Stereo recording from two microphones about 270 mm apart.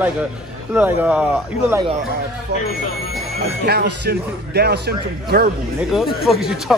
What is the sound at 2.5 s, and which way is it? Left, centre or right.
Speech, right.